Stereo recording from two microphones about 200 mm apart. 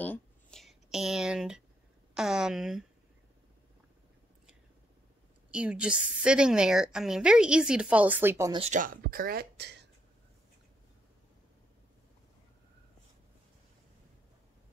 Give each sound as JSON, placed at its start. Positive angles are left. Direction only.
{"t": 0.0, "sound": "a sound", "side_deg": 5}
{"t": 2.1, "sound": "a woman's voice", "side_deg": -5}
{"t": 5.5, "sound": "a woman's voice", "side_deg": -5}
{"t": 8.5, "sound": "speech", "side_deg": -35}